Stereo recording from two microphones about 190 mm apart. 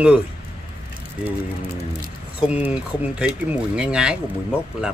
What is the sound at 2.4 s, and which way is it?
Speech, 5° right (ahead or behind).